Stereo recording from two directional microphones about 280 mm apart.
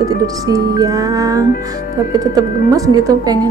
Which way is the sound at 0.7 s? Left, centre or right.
Centre.